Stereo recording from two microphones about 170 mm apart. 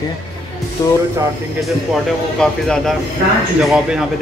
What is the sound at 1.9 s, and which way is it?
Speech, centre (ahead or behind).